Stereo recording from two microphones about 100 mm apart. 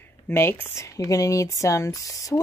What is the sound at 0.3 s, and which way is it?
Speech, 25° left (ahead or behind).